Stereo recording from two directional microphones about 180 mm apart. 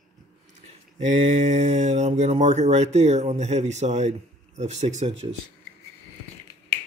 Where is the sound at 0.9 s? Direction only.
40° right (ahead or behind).